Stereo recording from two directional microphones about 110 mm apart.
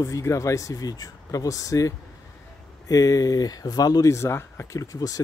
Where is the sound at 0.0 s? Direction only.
30° left (ahead or behind).